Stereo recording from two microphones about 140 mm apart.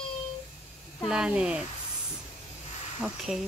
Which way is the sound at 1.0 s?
5° right (ahead or behind).